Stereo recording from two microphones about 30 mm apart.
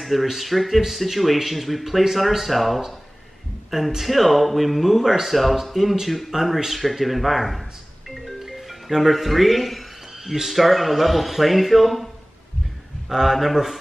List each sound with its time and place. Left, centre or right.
0.0 s a man's voice: centre
8.4 s music: centre
10.5 s speech: centre
13.1 s a man's voice: centre